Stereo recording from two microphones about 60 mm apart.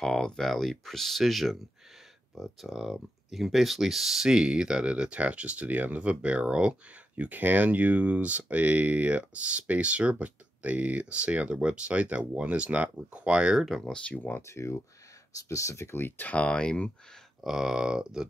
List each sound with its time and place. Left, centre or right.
0.0 s speech: centre
7.2 s speech: right
13.6 s speech: centre
14.1 s speech: left
14.5 s speech: left
16.0 s speech: left
16.4 s speech: centre
17.4 s speech: centre